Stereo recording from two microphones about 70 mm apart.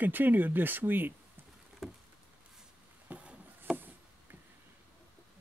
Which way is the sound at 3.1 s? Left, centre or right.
Centre.